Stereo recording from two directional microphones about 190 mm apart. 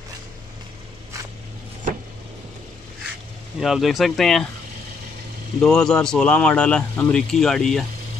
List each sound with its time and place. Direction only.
3.5 s speech: centre (ahead or behind)
5.6 s speech: 5° left (ahead or behind)